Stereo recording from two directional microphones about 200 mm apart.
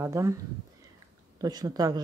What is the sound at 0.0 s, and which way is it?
Speech, 15° right (ahead or behind).